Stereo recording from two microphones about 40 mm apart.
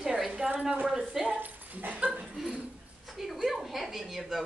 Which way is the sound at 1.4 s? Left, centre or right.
Right.